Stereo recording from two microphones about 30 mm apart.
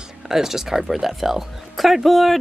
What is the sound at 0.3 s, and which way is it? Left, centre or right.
Speech, centre.